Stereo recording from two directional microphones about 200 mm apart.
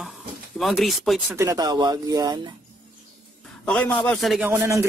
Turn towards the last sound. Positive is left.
turn(degrees=-15)  # may be behind; listen again after turning